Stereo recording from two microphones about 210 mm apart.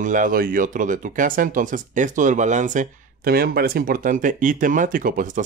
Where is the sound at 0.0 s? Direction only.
40° right (ahead or behind).